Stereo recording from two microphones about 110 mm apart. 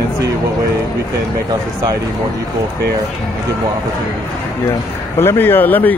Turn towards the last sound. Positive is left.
turn(degrees=15)  # may be behind; listen again after turning